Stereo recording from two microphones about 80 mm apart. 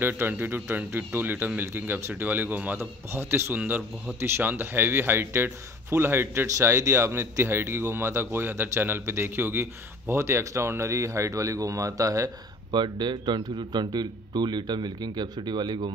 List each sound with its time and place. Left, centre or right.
0.0 s a man's voice: right
2.8 s a man's voice: right
12.7 s a man's voice: right